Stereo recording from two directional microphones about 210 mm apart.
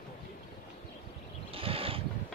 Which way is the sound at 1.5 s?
25° right (ahead or behind).